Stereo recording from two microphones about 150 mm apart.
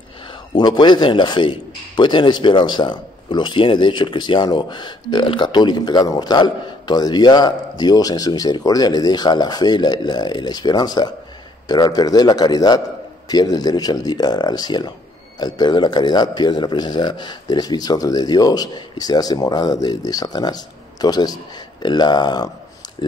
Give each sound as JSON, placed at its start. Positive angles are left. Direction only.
{"t": 0.3, "sound": "a man's voice", "side_deg": 30}